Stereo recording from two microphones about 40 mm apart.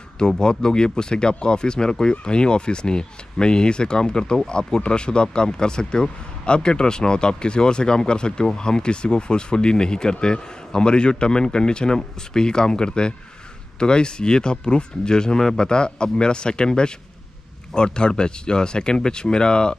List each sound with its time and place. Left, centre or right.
0.4 s speech: centre